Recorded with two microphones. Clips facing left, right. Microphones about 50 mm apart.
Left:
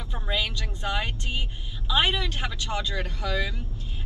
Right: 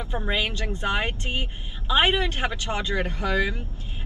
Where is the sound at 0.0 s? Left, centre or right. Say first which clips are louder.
Right 3 dB; right.